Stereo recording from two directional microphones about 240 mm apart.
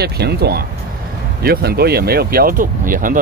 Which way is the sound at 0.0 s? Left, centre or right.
Right.